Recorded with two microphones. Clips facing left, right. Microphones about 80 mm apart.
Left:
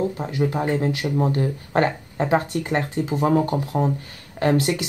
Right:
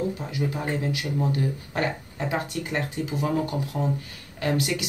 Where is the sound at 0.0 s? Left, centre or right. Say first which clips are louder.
Left 5 dB; left.